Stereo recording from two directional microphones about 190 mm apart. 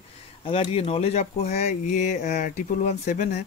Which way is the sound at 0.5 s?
30° left (ahead or behind).